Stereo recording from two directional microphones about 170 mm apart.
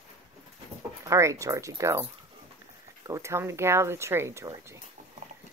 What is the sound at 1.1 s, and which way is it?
Speech, 15° right (ahead or behind).